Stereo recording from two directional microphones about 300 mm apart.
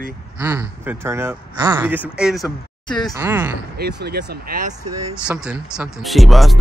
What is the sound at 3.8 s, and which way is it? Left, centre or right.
Speech, right.